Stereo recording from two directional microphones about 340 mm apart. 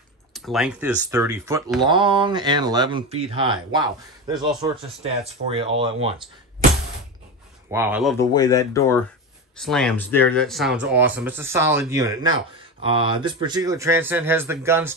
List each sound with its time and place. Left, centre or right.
0.3 s speech: centre
7.7 s speech: centre
8.3 s speech: centre